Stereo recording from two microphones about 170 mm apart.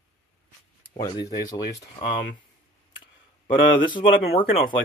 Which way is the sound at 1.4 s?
25° left (ahead or behind).